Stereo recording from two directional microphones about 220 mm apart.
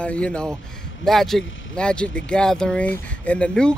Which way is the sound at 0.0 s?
5° left (ahead or behind).